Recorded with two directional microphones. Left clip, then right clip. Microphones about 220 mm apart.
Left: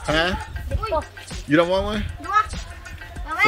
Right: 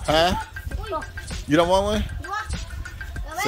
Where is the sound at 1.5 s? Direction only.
10° right (ahead or behind).